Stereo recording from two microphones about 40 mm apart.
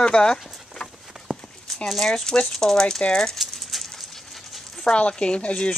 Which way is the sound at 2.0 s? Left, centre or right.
Centre.